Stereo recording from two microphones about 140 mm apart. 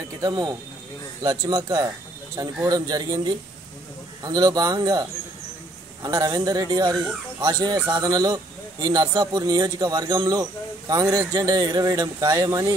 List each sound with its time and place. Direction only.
0.2 s a man's voice: 30° right (ahead or behind)
6.0 s a man's voice: 25° right (ahead or behind)